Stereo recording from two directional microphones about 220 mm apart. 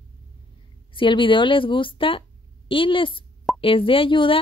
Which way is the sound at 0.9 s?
20° left (ahead or behind).